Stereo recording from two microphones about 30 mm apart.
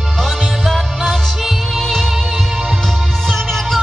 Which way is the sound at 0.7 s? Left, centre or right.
Centre.